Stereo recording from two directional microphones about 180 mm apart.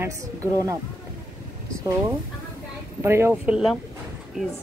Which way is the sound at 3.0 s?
15° right (ahead or behind).